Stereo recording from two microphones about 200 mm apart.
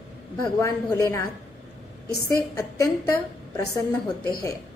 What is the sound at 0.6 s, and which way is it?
Speech, 15° left (ahead or behind).